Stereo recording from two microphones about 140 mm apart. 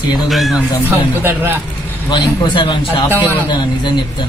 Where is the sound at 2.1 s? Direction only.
35° left (ahead or behind).